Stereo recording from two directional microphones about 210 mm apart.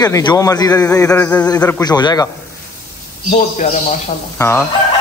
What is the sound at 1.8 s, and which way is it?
Speech, 20° left (ahead or behind).